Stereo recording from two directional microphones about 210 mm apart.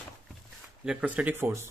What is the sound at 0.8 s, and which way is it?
Speech, 5° right (ahead or behind).